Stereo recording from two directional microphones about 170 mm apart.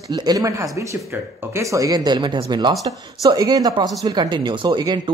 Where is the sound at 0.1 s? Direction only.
25° right (ahead or behind).